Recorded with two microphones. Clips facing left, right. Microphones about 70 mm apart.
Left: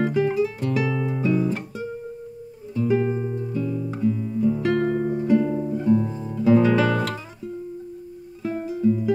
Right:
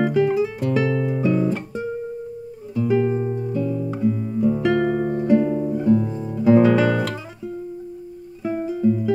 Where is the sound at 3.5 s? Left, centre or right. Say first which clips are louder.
Right 2 dB; centre.